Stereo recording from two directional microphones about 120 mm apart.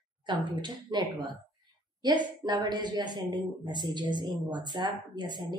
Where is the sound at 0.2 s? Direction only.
40° right (ahead or behind).